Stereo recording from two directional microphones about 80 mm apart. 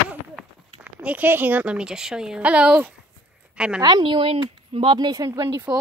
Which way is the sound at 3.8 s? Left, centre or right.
Right.